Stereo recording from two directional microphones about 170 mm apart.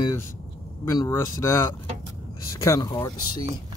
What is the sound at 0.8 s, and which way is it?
Speech, 20° left (ahead or behind).